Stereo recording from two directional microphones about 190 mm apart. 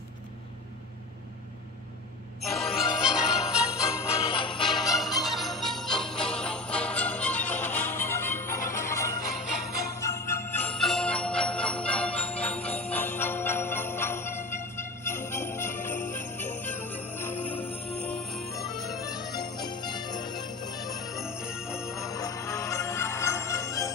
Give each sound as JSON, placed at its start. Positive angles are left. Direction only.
{"t": 2.7, "sound": "jingle bell", "side_deg": -5}
{"t": 4.3, "sound": "music", "side_deg": 25}
{"t": 4.6, "sound": "jingle bell", "side_deg": 0}
{"t": 8.6, "sound": "music", "side_deg": 15}
{"t": 9.9, "sound": "jingle bell", "side_deg": 15}
{"t": 17.5, "sound": "music", "side_deg": 10}
{"t": 19.3, "sound": "jingle bell", "side_deg": 20}
{"t": 21.0, "sound": "jingle bell", "side_deg": 0}
{"t": 22.1, "sound": "music", "side_deg": 15}